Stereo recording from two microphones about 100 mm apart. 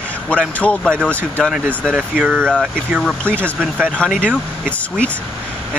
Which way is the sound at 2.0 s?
15° right (ahead or behind).